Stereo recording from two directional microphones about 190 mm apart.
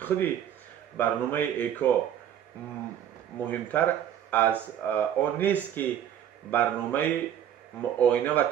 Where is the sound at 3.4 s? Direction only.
10° left (ahead or behind).